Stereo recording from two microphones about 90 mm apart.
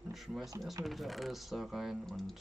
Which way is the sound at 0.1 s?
Centre (ahead or behind).